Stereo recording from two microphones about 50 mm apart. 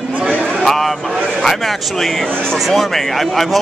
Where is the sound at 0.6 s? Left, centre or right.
Centre.